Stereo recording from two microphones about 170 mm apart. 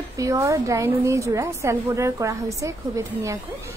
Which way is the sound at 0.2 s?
20° right (ahead or behind).